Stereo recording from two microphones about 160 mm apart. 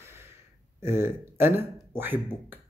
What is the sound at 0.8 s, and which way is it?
Speech, 15° right (ahead or behind).